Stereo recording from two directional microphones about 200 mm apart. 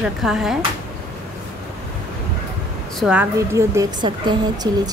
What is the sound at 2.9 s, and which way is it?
A woman's voice, 5° right (ahead or behind).